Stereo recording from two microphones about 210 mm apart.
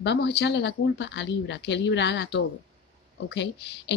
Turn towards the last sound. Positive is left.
turn(degrees=55)  # may be behind; listen again after turning